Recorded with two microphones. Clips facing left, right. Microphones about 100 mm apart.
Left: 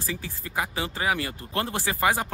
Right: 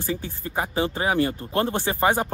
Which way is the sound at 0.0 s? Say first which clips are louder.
Right 5 dB; 30° right (ahead or behind).